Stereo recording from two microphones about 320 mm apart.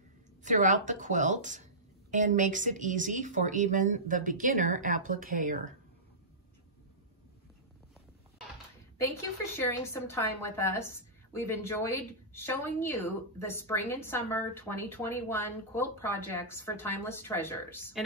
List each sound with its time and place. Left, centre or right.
0.4 s speech: right
9.0 s a woman's voice: centre